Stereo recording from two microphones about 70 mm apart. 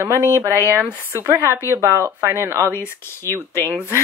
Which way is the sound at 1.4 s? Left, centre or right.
Right.